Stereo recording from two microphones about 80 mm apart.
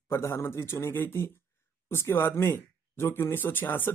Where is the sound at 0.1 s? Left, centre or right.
Left.